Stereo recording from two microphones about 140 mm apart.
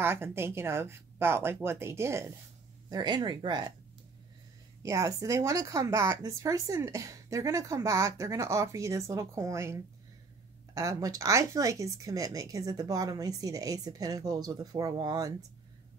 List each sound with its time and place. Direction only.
0.0 s speech: 15° right (ahead or behind)
2.9 s speech: 30° right (ahead or behind)
4.8 s speech: 20° right (ahead or behind)